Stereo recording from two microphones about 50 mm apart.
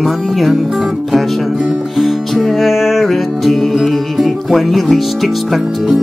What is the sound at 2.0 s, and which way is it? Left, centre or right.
Music, centre.